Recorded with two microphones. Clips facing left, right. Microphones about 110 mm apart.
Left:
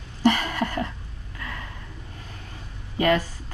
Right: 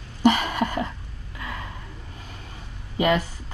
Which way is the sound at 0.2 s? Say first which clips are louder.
Right 2 dB; 15° right (ahead or behind).